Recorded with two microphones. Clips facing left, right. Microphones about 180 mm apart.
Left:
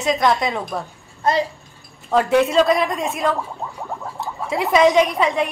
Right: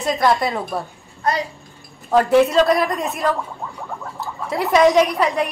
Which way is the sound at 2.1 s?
Centre (ahead or behind).